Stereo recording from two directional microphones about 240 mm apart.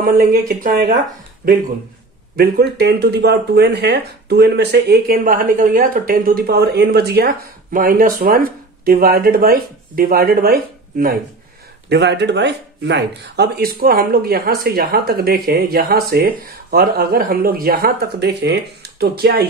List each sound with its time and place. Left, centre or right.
0.0 s speech: right
2.3 s speech: right